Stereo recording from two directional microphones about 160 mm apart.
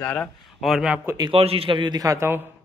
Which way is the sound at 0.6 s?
5° right (ahead or behind).